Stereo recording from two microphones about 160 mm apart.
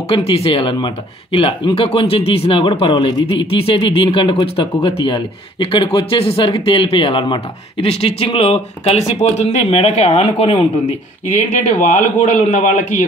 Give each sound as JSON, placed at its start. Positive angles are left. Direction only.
{"t": 0.1, "sound": "a man's voice", "side_deg": 35}